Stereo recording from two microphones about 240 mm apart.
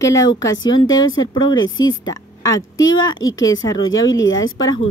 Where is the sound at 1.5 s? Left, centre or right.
Left.